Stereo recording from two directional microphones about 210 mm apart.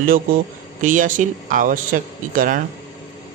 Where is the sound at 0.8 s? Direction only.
40° right (ahead or behind).